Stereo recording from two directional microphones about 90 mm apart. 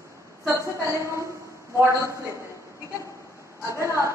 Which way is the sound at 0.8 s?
35° right (ahead or behind).